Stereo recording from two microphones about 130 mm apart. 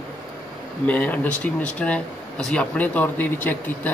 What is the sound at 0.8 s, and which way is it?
Speech, 10° left (ahead or behind).